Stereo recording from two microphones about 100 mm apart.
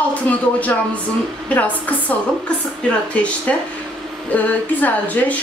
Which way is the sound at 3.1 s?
10° left (ahead or behind).